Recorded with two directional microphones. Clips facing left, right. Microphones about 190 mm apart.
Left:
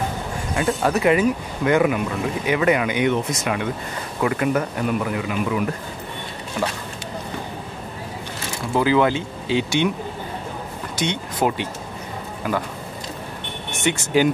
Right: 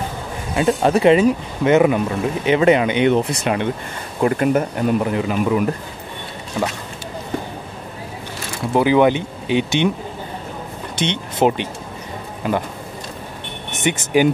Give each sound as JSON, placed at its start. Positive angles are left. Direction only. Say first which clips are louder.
{"t": 0.6, "sound": "speech", "louder": "right 5 dB", "side_deg": -20}
{"t": 4.6, "sound": "speech", "louder": "right 4 dB", "side_deg": -30}
{"t": 8.7, "sound": "speech", "louder": "right 4 dB", "side_deg": -20}
{"t": 11.0, "sound": "speech", "louder": "right 4 dB", "side_deg": -25}
{"t": 13.7, "sound": "speech", "louder": "right 2 dB", "side_deg": -20}